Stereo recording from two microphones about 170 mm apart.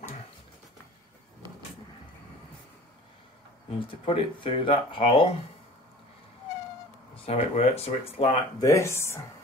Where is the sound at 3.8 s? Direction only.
30° left (ahead or behind).